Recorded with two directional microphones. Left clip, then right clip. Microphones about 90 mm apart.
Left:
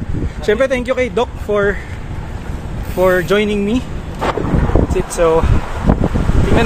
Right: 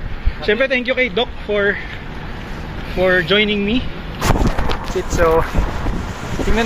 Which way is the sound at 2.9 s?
5° left (ahead or behind).